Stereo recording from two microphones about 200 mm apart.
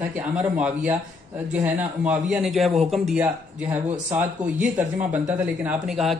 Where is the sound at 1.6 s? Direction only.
5° right (ahead or behind).